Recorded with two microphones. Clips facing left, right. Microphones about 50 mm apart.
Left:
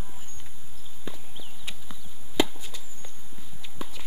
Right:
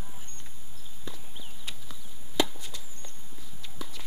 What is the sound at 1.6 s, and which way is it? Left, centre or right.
Chop, centre.